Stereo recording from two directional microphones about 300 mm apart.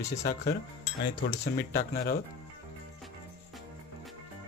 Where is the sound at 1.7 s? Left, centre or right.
Left.